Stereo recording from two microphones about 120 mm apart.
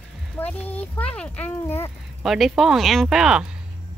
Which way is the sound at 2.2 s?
Centre (ahead or behind).